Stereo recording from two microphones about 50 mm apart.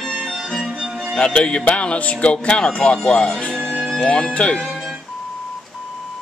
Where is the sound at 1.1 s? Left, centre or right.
Centre.